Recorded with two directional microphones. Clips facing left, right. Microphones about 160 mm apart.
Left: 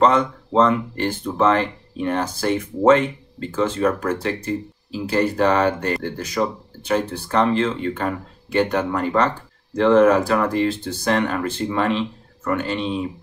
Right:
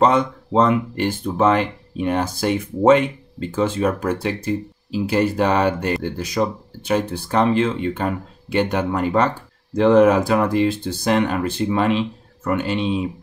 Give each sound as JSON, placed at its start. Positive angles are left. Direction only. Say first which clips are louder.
{"t": 0.0, "sound": "speech", "louder": "even", "side_deg": -10}